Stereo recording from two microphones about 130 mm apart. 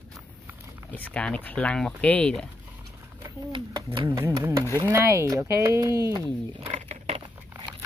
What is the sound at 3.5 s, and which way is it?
Speech, 40° right (ahead or behind).